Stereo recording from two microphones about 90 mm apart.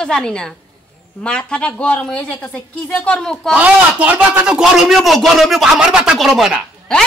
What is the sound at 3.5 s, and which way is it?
Speech, 15° right (ahead or behind).